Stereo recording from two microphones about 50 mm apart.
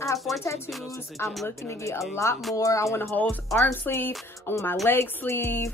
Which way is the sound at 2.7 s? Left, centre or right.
Left.